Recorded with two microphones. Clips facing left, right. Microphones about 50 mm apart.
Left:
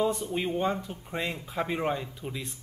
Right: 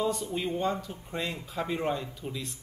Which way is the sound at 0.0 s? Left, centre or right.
Left.